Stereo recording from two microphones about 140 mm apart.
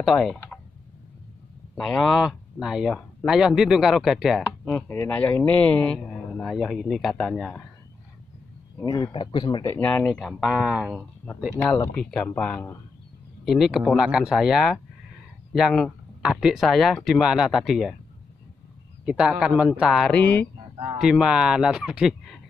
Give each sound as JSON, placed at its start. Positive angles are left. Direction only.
{"t": 0.0, "sound": "speech", "side_deg": 0}
{"t": 1.8, "sound": "speech", "side_deg": 5}
{"t": 4.7, "sound": "speech", "side_deg": 15}
{"t": 8.8, "sound": "speech", "side_deg": 30}
{"t": 9.8, "sound": "speech", "side_deg": 10}
{"t": 12.0, "sound": "speech", "side_deg": 5}
{"t": 19.0, "sound": "speech", "side_deg": -5}
{"t": 20.1, "sound": "speech", "side_deg": 10}
{"t": 21.0, "sound": "speech", "side_deg": -5}